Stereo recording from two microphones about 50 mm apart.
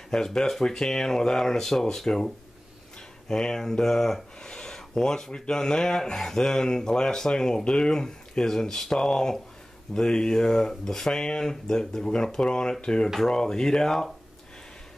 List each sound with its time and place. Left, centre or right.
0.1 s speech: centre